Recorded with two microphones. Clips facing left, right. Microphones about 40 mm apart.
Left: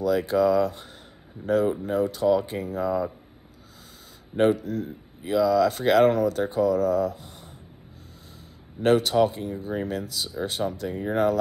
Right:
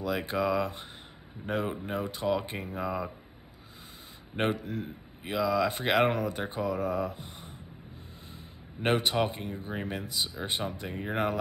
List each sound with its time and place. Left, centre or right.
0.0 s speech: right
4.4 s speech: right
8.8 s speech: right